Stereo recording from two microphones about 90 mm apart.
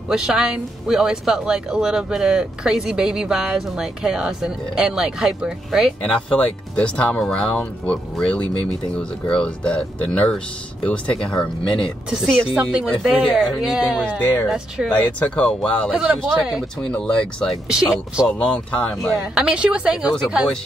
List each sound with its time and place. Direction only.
0.1 s speech: 5° right (ahead or behind)
6.3 s speech: 15° left (ahead or behind)
12.5 s speech: 10° right (ahead or behind)
14.0 s speech: 20° left (ahead or behind)
15.9 s speech: 10° right (ahead or behind)
16.9 s speech: 10° left (ahead or behind)
17.6 s speech: 10° right (ahead or behind)
18.4 s speech: 10° left (ahead or behind)
18.9 s speech: centre (ahead or behind)